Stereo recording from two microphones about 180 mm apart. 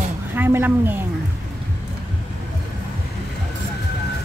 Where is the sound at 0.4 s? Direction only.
10° right (ahead or behind).